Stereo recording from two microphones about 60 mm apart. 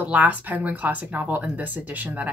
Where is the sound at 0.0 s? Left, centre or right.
Right.